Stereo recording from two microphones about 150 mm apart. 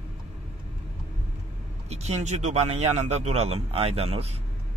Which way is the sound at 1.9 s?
45° right (ahead or behind).